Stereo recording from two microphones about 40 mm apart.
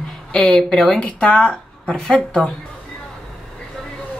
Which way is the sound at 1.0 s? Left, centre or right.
Left.